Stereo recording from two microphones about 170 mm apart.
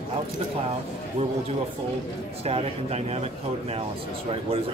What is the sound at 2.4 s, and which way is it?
Speech, 35° right (ahead or behind).